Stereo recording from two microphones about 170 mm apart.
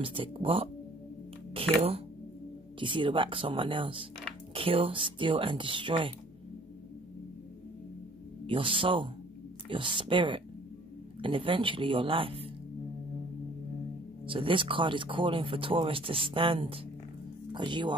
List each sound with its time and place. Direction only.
0.0 s speech: 30° right (ahead or behind)
8.5 s speech: 30° right (ahead or behind)
14.2 s speech: 30° right (ahead or behind)